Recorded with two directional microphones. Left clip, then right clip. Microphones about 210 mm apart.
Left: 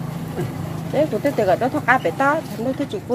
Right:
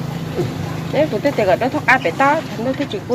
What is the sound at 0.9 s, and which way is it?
Speech, 25° left (ahead or behind).